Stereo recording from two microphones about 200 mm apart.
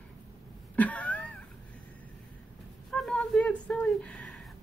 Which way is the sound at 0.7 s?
5° left (ahead or behind).